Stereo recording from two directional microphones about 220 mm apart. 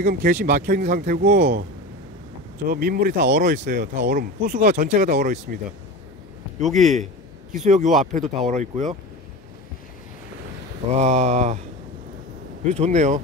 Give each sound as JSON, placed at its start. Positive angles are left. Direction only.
{"t": 0.0, "sound": "speech", "side_deg": -40}
{"t": 6.6, "sound": "a man's voice", "side_deg": 0}
{"t": 7.5, "sound": "speech", "side_deg": -35}
{"t": 10.9, "sound": "speech", "side_deg": -30}
{"t": 12.6, "sound": "speech", "side_deg": -30}